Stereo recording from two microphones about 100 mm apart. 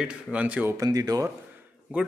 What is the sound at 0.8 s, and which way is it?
Speech, 35° right (ahead or behind).